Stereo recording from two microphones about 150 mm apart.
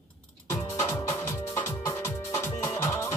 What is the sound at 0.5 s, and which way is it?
Music, 20° left (ahead or behind).